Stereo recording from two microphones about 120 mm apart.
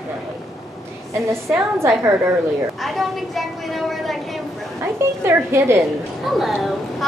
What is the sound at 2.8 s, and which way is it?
A child's voice, centre (ahead or behind).